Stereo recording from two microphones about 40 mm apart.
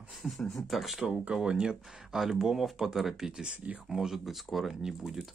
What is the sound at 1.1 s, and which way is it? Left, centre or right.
Speech, centre.